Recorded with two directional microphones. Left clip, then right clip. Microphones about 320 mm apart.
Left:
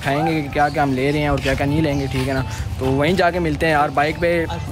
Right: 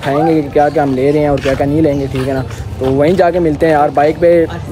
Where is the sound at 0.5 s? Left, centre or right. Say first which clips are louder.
Right 7 dB; centre.